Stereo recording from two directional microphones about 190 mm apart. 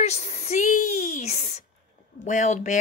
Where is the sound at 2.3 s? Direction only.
40° left (ahead or behind).